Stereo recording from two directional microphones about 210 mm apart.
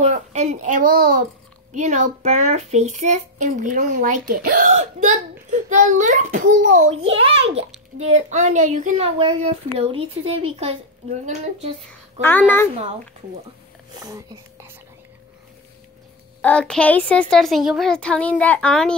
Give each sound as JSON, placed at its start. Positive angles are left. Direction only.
{"t": 0.0, "sound": "a child's voice", "side_deg": -35}
{"t": 11.9, "sound": "speech", "side_deg": 10}
{"t": 14.0, "sound": "speech", "side_deg": -15}
{"t": 16.3, "sound": "a woman's voice", "side_deg": 5}